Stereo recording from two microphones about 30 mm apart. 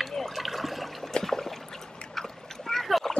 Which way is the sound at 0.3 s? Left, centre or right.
Centre.